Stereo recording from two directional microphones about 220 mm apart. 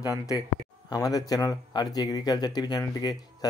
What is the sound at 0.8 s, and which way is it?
Speech, 15° left (ahead or behind).